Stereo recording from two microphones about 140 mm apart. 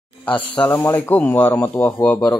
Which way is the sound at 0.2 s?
10° left (ahead or behind).